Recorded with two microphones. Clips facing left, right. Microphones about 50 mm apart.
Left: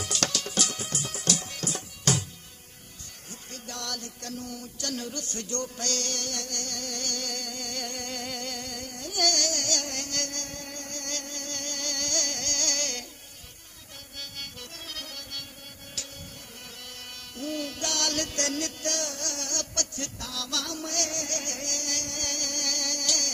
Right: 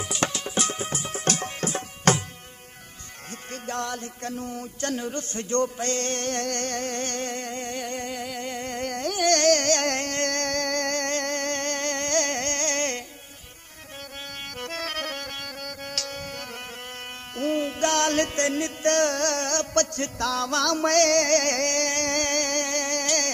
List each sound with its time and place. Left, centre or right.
0.0 s music: centre; by 2.1 s right
3.5 s music: right
8.8 s carnatic music: right
9.3 s music: right
10.2 s music: right
11.2 s music: right
14.2 s music: right
14.7 s music: right
15.4 s music: right
17.6 s music: right
20.7 s music: right
21.6 s music: right